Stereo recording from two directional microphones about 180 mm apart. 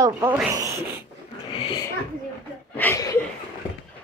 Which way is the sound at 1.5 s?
30° left (ahead or behind).